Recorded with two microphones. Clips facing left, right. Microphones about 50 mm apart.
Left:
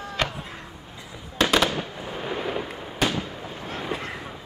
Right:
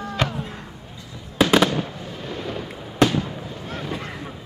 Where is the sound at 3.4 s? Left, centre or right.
Centre.